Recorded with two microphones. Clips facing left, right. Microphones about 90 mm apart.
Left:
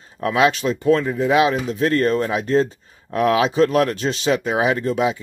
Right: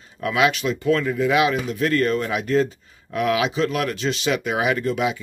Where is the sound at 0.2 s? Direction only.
35° left (ahead or behind).